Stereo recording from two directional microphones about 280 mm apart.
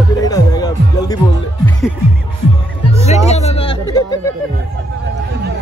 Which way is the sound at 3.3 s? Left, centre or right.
Left.